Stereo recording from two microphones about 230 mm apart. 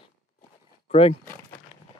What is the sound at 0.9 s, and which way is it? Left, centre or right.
Speech, left.